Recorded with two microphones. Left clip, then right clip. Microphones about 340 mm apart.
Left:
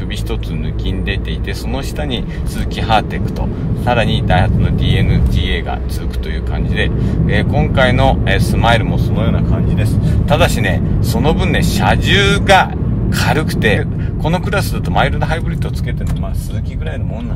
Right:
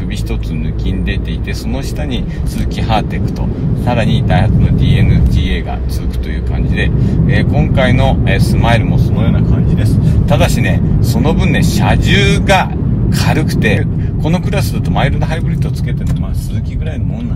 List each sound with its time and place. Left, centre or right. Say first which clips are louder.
3.8 s vehicle: left 2 dB; left
6.7 s vehicle: right 1 dB; left
14.2 s speech: left 1 dB; left